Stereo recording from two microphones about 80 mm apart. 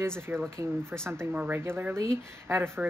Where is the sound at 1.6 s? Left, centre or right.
Right.